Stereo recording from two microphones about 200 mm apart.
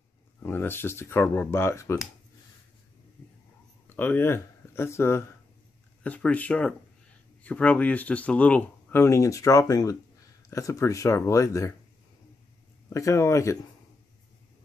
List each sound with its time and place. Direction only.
0.4 s speech: 10° left (ahead or behind)
3.9 s speech: 10° left (ahead or behind)
12.9 s speech: 15° left (ahead or behind)